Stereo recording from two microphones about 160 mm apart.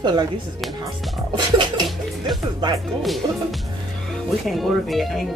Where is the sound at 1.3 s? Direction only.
30° right (ahead or behind).